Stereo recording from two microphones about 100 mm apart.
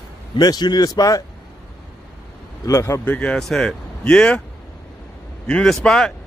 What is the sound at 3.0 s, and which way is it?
Speech, 15° left (ahead or behind).